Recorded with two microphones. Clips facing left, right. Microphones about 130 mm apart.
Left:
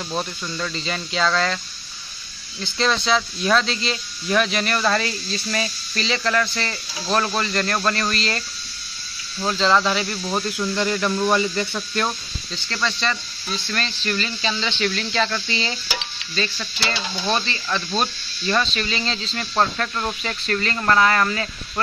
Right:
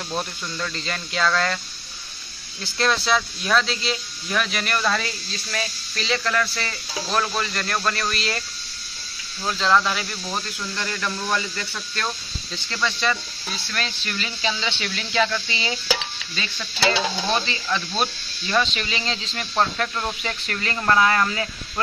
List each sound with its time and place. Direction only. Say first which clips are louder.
0.1 s speech: left 1 dB; centre (ahead or behind)
2.6 s speech: left 1 dB; 5° right (ahead or behind)
9.5 s speech: left 2 dB; centre (ahead or behind)
10.8 s speech: left 7 dB; 25° left (ahead or behind)
12.6 s speech: even; 10° right (ahead or behind)
17.7 s speech: left 2 dB; 5° right (ahead or behind)